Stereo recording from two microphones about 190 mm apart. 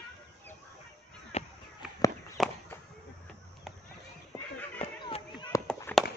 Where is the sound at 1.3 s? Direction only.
35° left (ahead or behind).